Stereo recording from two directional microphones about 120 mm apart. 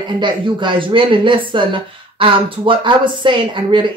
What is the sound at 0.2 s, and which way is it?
A woman's voice, 40° right (ahead or behind).